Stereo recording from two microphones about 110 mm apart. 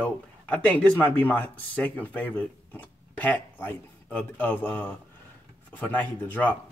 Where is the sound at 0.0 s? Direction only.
15° left (ahead or behind).